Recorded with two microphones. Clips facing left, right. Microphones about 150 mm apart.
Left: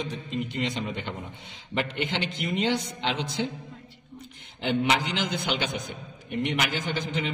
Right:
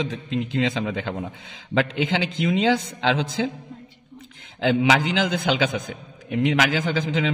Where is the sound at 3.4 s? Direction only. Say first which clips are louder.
Right 5 dB; 90° right.